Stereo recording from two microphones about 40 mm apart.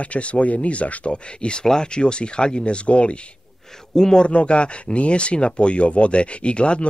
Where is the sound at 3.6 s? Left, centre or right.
Centre.